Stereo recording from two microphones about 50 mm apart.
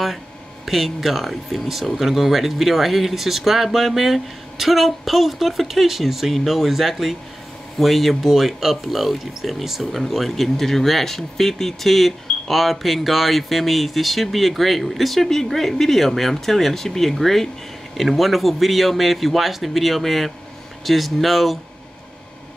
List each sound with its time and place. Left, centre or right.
0.7 s speech: centre